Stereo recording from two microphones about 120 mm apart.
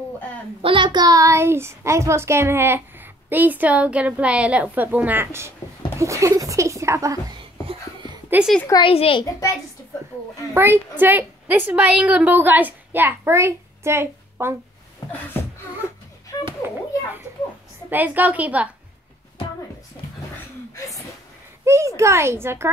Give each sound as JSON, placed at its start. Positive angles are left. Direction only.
{"t": 0.6, "sound": "a woman's voice", "side_deg": -45}
{"t": 8.3, "sound": "a woman's voice", "side_deg": -15}
{"t": 8.8, "sound": "a child's voice", "side_deg": 50}
{"t": 9.2, "sound": "a child's voice", "side_deg": 25}
{"t": 10.5, "sound": "a woman's voice", "side_deg": -20}
{"t": 16.3, "sound": "children playing", "side_deg": 30}
{"t": 17.8, "sound": "a woman's voice", "side_deg": -15}
{"t": 21.6, "sound": "a woman's voice", "side_deg": -25}